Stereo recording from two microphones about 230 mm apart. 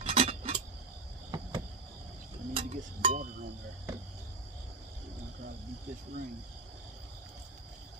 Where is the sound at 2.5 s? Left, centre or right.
Right.